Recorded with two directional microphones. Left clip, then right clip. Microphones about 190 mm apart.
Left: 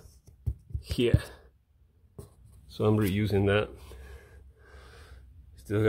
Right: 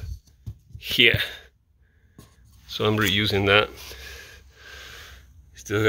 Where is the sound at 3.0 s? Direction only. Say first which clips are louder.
Right 7 dB; 5° left (ahead or behind).